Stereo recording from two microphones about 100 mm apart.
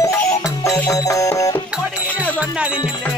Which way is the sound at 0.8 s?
35° left (ahead or behind).